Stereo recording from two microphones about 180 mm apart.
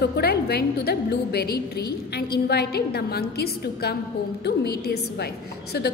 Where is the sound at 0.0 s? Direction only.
65° left (ahead or behind).